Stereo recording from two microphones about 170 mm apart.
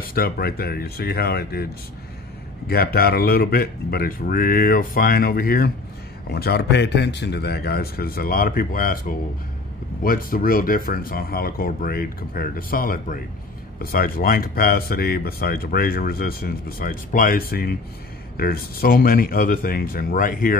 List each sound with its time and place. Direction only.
0.0 s speech: 60° left (ahead or behind)
2.7 s speech: 65° left (ahead or behind)
6.3 s speech: 70° left (ahead or behind); by 20.5 s 55° left (ahead or behind)